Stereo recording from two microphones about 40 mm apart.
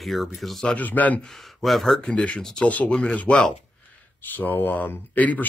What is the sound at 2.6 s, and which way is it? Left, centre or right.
Speech, left.